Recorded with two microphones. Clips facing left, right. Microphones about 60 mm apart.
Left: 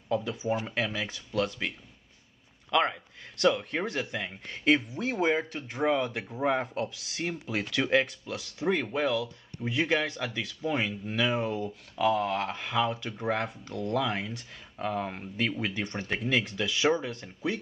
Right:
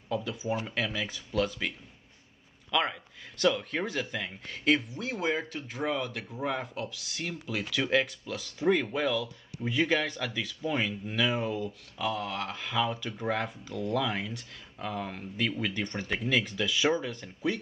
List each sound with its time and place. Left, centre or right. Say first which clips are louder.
0.1 s speech: left 3 dB; centre
2.7 s speech: left 3 dB; centre
4.9 s speech: left 4 dB; left
5.2 s speech: left 4 dB; centre
6.0 s speech: left 5 dB; centre
12.1 s speech: left 6 dB; left
12.5 s speech: left 2 dB; centre
15.6 s speech: even; centre